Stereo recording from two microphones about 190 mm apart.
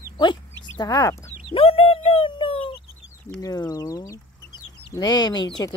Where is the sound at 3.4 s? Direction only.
20° left (ahead or behind).